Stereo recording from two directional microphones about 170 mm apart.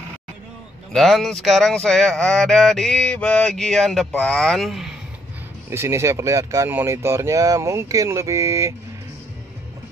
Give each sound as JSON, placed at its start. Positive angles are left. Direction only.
{"t": 0.9, "sound": "speech", "side_deg": 0}
{"t": 5.7, "sound": "speech", "side_deg": -15}